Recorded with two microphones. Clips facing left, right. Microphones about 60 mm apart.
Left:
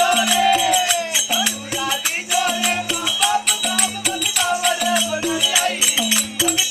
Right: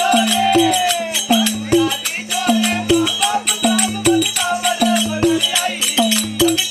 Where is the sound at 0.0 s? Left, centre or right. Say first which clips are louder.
Right 1 dB; centre.